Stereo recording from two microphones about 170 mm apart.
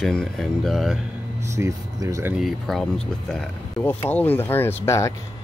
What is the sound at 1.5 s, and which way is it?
Speech, 15° right (ahead or behind).